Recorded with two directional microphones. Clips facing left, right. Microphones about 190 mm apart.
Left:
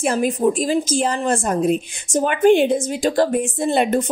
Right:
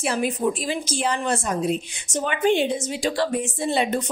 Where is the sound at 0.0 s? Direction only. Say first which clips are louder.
Left 5 dB; 45° left (ahead or behind).